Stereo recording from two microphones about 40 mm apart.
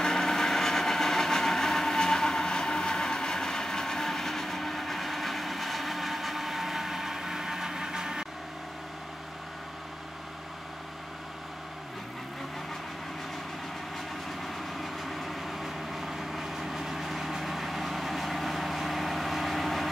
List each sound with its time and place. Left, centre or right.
0.0 s vehicle: centre
14.4 s vehicle: centre